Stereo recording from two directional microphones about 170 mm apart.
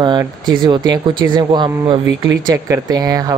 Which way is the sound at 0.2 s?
25° right (ahead or behind).